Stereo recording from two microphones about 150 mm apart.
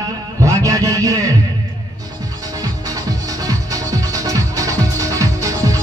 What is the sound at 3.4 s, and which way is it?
Music, 20° right (ahead or behind).